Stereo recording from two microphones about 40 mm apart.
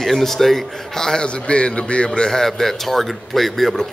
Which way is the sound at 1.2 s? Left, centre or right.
Left.